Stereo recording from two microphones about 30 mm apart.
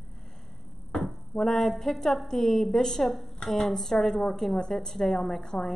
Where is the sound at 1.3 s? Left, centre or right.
Centre.